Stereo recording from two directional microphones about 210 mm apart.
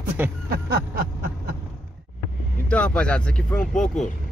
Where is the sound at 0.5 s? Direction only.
45° right (ahead or behind).